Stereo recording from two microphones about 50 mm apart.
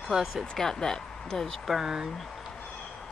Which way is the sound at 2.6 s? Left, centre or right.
Centre.